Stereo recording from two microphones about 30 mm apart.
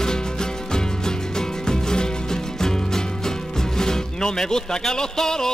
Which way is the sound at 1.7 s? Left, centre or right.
Left.